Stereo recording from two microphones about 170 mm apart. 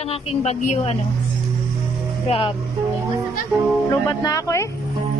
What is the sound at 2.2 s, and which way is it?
Speech, 30° left (ahead or behind).